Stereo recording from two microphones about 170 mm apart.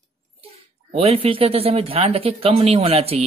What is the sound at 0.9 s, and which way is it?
Speech, 35° right (ahead or behind).